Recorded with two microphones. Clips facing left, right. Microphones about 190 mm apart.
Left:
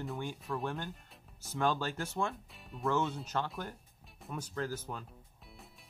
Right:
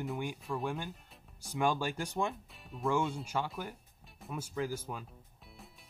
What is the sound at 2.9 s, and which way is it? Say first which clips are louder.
Speech: right 1 dB; 10° right (ahead or behind).